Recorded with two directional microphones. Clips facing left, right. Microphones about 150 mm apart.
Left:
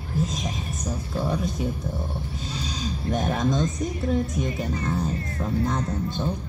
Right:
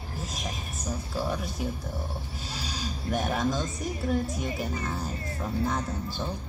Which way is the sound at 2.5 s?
5° right (ahead or behind).